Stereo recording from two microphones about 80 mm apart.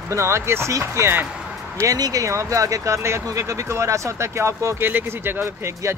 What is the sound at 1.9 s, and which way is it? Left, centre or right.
Speech, right.